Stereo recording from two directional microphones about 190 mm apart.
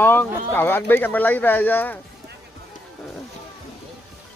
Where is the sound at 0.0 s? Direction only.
10° left (ahead or behind).